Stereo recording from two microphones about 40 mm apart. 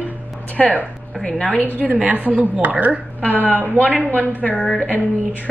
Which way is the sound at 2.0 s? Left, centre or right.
Right.